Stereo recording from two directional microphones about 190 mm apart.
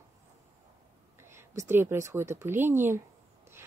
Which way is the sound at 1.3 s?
15° right (ahead or behind).